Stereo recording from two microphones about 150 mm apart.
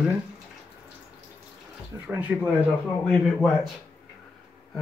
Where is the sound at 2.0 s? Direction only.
10° right (ahead or behind).